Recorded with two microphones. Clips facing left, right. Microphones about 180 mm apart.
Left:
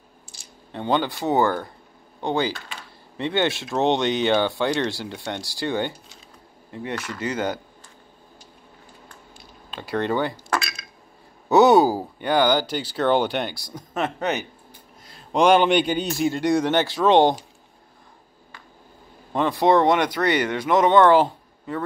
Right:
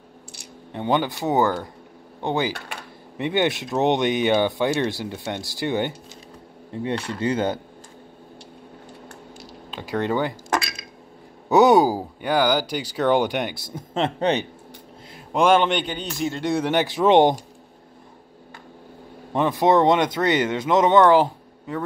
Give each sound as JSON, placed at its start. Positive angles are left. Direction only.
{"t": 0.7, "sound": "speech", "side_deg": -15}
{"t": 9.7, "sound": "speech", "side_deg": -15}
{"t": 11.5, "sound": "speech", "side_deg": -15}
{"t": 15.3, "sound": "speech", "side_deg": 0}
{"t": 16.5, "sound": "speech", "side_deg": -10}
{"t": 16.8, "sound": "speech", "side_deg": -20}
{"t": 19.3, "sound": "speech", "side_deg": -15}